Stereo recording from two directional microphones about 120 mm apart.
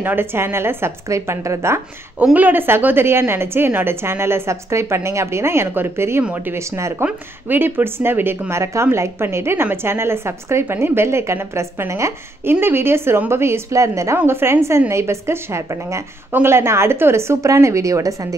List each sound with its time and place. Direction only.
0.0 s speech: 15° right (ahead or behind)